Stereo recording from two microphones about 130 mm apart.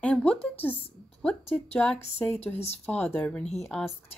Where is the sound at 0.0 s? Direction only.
10° left (ahead or behind).